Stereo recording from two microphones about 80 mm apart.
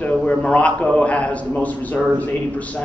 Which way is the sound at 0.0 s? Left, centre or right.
Centre.